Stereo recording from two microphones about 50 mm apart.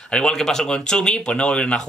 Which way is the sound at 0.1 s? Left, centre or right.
Centre.